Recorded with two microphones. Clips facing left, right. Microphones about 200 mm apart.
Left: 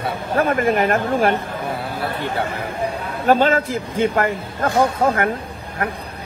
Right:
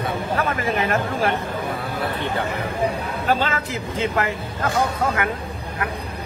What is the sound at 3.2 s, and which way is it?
Speech, 50° left (ahead or behind).